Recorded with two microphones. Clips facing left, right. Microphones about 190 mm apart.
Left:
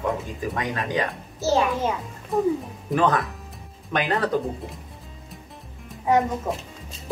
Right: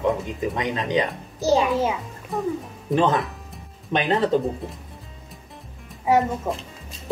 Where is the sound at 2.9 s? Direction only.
25° right (ahead or behind).